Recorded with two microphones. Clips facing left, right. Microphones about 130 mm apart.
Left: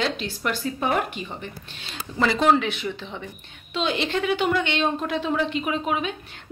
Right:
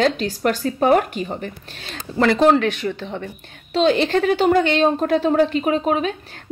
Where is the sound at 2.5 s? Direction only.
50° right (ahead or behind).